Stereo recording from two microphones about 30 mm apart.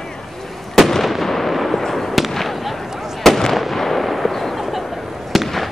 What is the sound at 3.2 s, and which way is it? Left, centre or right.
Fireworks, centre.